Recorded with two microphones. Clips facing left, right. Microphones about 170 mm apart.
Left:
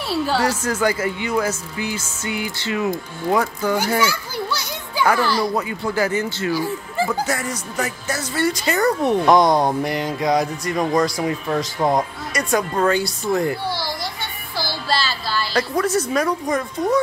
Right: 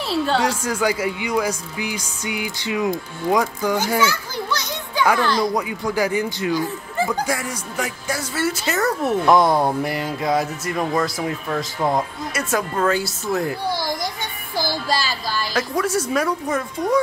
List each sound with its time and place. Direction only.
0.0 s speech: 5° left (ahead or behind)
0.6 s speech: 10° right (ahead or behind)
4.0 s children playing: 10° left (ahead or behind)
5.1 s speech: 5° left (ahead or behind)
5.6 s speech: 10° right (ahead or behind)
6.5 s speech: 5° left (ahead or behind)
7.2 s speech: 10° right (ahead or behind)
11.4 s speech: 15° left (ahead or behind)
12.3 s speech: 5° right (ahead or behind)
14.7 s music: 15° right (ahead or behind)
15.8 s speech: 10° right (ahead or behind)